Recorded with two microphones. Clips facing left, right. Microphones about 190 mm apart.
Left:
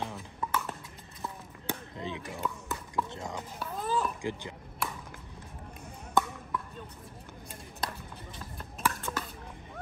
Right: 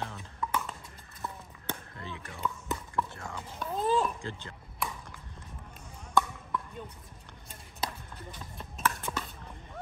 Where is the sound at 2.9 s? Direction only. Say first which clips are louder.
Left 4 dB; 20° left (ahead or behind).